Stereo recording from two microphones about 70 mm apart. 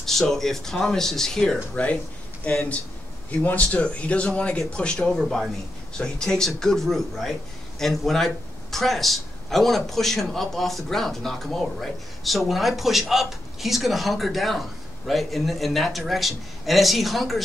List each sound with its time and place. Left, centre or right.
0.0 s a man's voice: centre
3.3 s a man's voice: left; by 17.4 s centre